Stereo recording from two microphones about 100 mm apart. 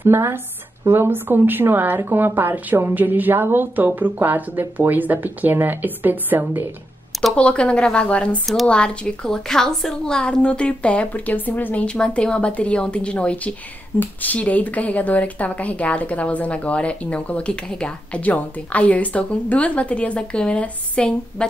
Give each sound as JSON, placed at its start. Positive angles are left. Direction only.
{"t": 0.0, "sound": "speech", "side_deg": -25}
{"t": 7.3, "sound": "a woman's voice", "side_deg": 10}